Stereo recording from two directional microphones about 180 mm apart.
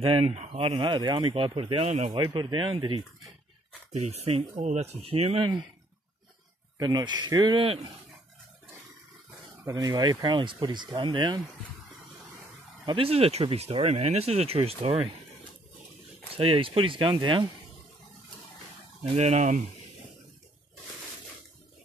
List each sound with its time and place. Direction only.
0.0 s speech: 30° right (ahead or behind)
6.8 s speech: 20° right (ahead or behind)
9.7 s speech: 20° right (ahead or behind)
12.8 s speech: 30° right (ahead or behind)
16.3 s speech: 30° right (ahead or behind)
19.1 s speech: 40° right (ahead or behind)